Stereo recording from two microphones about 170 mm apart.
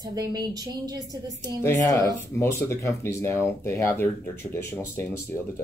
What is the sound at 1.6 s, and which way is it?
Speech, 20° left (ahead or behind).